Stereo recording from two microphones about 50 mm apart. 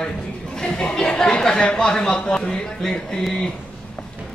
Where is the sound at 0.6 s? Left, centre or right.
Centre.